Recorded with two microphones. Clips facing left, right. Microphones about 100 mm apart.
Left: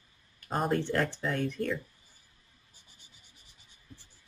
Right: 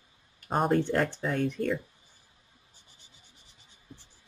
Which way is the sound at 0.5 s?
Centre (ahead or behind).